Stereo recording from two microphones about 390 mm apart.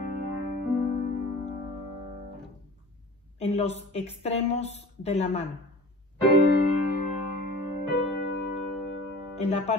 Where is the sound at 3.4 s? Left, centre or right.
Centre.